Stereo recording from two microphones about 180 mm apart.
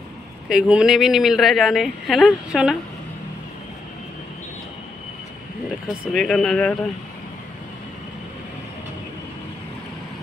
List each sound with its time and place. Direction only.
0.5 s speech: 5° right (ahead or behind)
6.1 s speech: 5° left (ahead or behind)